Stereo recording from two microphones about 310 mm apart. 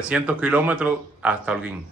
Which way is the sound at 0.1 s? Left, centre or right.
Centre.